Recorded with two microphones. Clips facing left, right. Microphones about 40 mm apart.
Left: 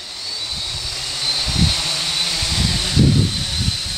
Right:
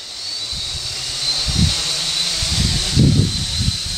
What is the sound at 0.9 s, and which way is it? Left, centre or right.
Vehicle, centre.